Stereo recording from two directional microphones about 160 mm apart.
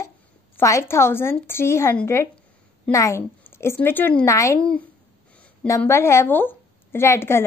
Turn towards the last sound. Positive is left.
turn(degrees=15)  # may be behind; listen again after turning